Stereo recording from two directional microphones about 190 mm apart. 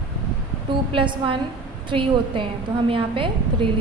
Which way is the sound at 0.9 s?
30° right (ahead or behind).